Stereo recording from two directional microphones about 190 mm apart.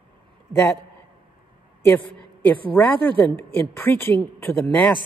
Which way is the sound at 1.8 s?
10° left (ahead or behind).